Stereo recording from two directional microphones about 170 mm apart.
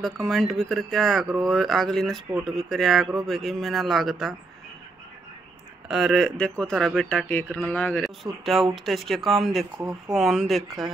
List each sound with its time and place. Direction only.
0.0 s speech: centre (ahead or behind)
5.9 s speech: centre (ahead or behind)
9.8 s speech: 15° right (ahead or behind)
10.1 s speech: centre (ahead or behind)